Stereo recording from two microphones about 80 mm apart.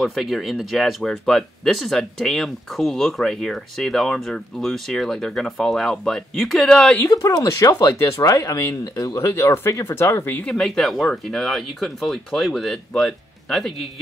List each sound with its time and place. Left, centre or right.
0.0 s speech: centre
7.1 s speech: left
10.4 s speech: centre